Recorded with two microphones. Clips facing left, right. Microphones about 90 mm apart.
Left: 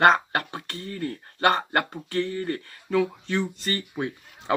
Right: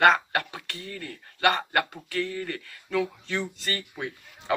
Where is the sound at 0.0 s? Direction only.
30° left (ahead or behind).